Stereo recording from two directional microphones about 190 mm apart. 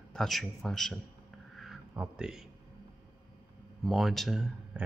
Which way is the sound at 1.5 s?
Centre (ahead or behind).